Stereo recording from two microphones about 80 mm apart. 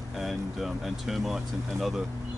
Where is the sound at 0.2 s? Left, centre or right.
Centre.